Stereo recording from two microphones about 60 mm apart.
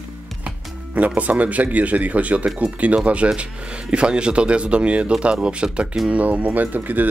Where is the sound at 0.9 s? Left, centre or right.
Right.